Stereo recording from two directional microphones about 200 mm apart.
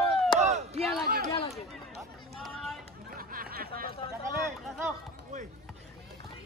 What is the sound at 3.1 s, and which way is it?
Snicker, 45° right (ahead or behind).